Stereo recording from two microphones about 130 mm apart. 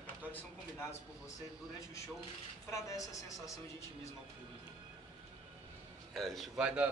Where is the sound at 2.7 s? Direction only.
25° left (ahead or behind).